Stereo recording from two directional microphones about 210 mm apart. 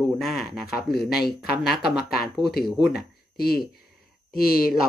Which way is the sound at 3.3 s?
45° left (ahead or behind).